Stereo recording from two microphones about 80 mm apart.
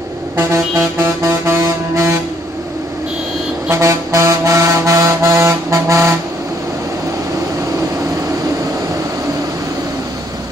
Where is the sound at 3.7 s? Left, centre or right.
Right.